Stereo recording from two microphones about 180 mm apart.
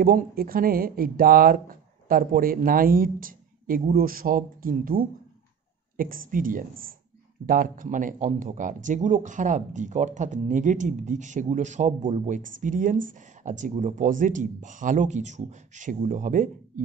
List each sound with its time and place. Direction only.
0.0 s a man's voice: 55° right (ahead or behind)